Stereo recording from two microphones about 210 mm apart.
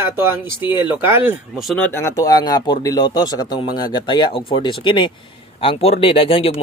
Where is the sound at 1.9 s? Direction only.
10° left (ahead or behind).